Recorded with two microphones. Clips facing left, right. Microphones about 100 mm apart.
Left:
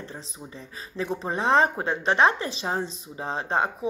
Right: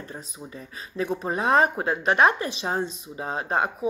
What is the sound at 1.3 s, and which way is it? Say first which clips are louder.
A woman's voice: even; 30° left (ahead or behind).